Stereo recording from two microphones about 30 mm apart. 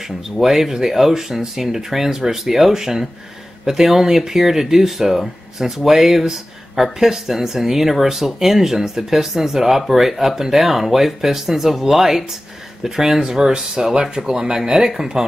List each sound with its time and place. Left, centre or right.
0.4 s speech: centre
13.5 s speech: right